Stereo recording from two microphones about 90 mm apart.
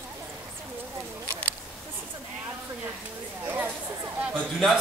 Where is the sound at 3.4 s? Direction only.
20° right (ahead or behind).